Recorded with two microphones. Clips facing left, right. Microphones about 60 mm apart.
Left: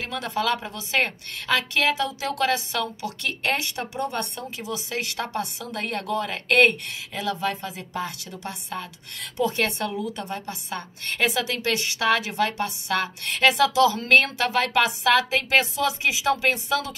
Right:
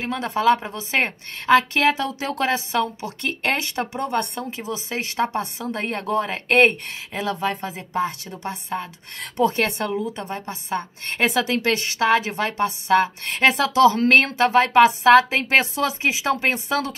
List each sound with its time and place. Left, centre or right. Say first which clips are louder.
0.0 s a woman's voice: right 6 dB; right